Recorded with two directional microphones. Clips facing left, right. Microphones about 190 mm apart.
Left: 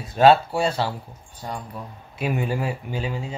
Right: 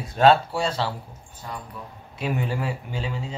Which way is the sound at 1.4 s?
40° left (ahead or behind).